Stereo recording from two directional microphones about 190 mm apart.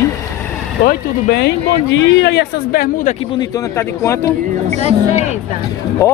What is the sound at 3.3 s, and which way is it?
Speech, 15° left (ahead or behind).